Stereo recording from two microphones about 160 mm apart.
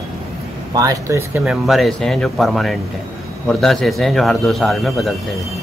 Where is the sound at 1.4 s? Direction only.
Centre (ahead or behind).